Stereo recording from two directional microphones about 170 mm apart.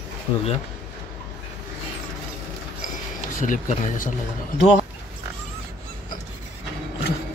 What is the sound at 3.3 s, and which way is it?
Speech, 50° left (ahead or behind).